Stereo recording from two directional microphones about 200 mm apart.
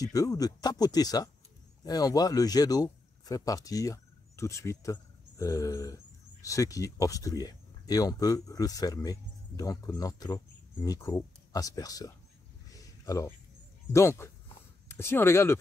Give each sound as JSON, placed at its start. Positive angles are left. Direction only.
{"t": 0.0, "sound": "speech", "side_deg": 15}
{"t": 12.7, "sound": "a sound", "side_deg": 15}
{"t": 13.9, "sound": "speech", "side_deg": 15}